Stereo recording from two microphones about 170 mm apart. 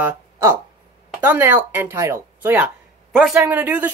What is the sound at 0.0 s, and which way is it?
Speech, 15° right (ahead or behind).